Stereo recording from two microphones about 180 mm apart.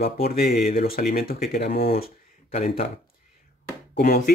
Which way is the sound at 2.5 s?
35° left (ahead or behind).